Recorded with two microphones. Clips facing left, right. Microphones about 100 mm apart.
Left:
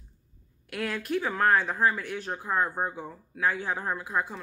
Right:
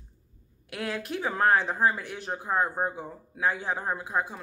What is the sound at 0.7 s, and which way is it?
Speech, 20° right (ahead or behind).